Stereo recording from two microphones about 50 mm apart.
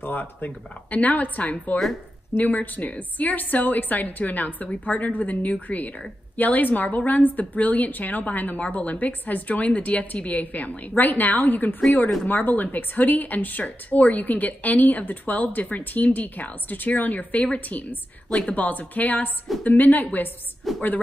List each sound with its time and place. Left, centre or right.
0.0 s a woman's voice: left
20.7 s a woman's voice: centre